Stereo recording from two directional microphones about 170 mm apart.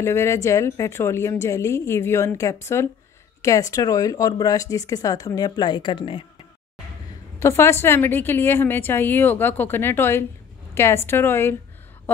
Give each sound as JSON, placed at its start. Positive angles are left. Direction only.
{"t": 0.0, "sound": "a woman's voice", "side_deg": 15}
{"t": 7.3, "sound": "a woman's voice", "side_deg": 15}